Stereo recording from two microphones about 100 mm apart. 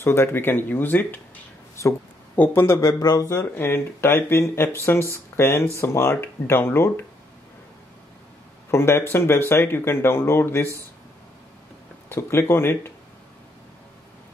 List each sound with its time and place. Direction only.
0.0 s speech: 25° left (ahead or behind)
1.8 s speech: 30° left (ahead or behind)
2.3 s speech: 20° left (ahead or behind)
2.9 s speech: 40° left (ahead or behind)
3.5 s speech: 25° left (ahead or behind)
8.6 s speech: 25° left (ahead or behind)
12.1 s speech: 25° left (ahead or behind)